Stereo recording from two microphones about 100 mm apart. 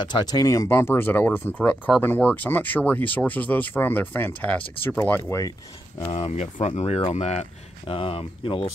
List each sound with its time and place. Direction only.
0.0 s speech: 45° left (ahead or behind)
0.7 s speech: 25° left (ahead or behind)
6.0 s speech: 65° left (ahead or behind); by 7.4 s 90° left
7.8 s speech: 65° left (ahead or behind)